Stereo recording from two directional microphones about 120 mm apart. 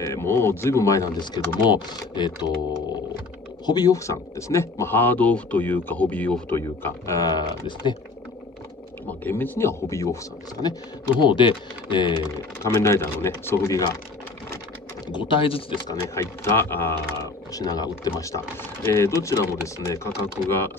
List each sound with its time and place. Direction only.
0.0 s speech: 20° left (ahead or behind); by 2.5 s 35° left (ahead or behind)
3.6 s speech: 35° left (ahead or behind); by 6.6 s 15° left (ahead or behind)
6.8 s speech: 25° left (ahead or behind)
9.2 s speech: 20° left (ahead or behind)
11.1 s speech: 40° left (ahead or behind)
12.6 s speech: 20° left (ahead or behind)
15.0 s speech: 45° left (ahead or behind)
15.9 s speech: 20° left (ahead or behind)
17.5 s speech: 30° left (ahead or behind)